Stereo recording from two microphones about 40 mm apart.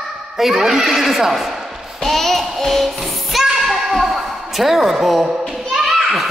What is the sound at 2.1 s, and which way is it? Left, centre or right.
Music, centre.